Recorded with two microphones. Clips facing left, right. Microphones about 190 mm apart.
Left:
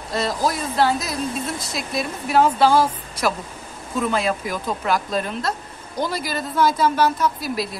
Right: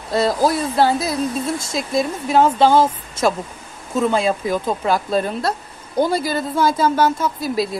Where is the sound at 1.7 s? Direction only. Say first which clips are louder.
Right 7 dB; 25° right (ahead or behind).